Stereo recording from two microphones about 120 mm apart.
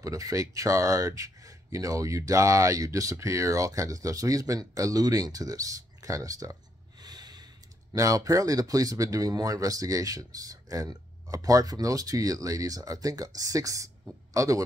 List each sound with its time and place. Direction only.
0.0 s speech: 25° right (ahead or behind)
7.0 s snort: 35° right (ahead or behind)
7.9 s a man's voice: 30° right (ahead or behind)